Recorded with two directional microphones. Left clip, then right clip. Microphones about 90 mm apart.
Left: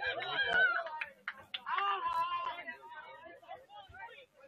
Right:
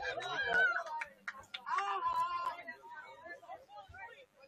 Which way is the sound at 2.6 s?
Centre (ahead or behind).